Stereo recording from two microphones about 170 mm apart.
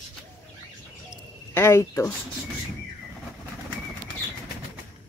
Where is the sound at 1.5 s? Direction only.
15° left (ahead or behind).